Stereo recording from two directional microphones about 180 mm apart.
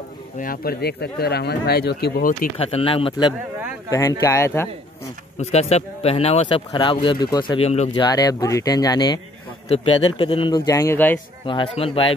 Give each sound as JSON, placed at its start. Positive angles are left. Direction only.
{"t": 0.4, "sound": "speech", "side_deg": 55}
{"t": 2.5, "sound": "speech", "side_deg": 30}
{"t": 4.2, "sound": "speech", "side_deg": 15}
{"t": 5.4, "sound": "a man's voice", "side_deg": 35}
{"t": 7.9, "sound": "a man's voice", "side_deg": 25}
{"t": 11.4, "sound": "speech", "side_deg": 30}